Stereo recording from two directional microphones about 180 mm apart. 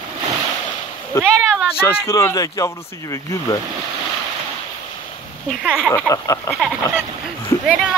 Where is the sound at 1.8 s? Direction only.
15° left (ahead or behind).